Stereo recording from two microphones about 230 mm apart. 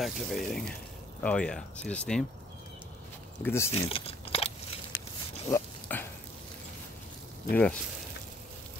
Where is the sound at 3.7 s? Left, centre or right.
Left.